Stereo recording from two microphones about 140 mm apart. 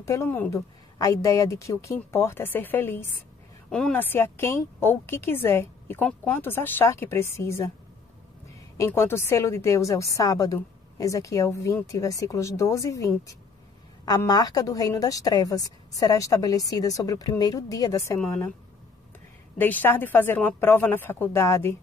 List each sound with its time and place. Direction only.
0.0 s a woman's voice: 20° left (ahead or behind)
8.7 s a woman's voice: 20° left (ahead or behind)
19.6 s a woman's voice: 15° left (ahead or behind)